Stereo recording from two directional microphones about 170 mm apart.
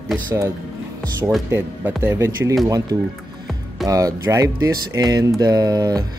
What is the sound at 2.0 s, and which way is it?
Speech, 15° right (ahead or behind).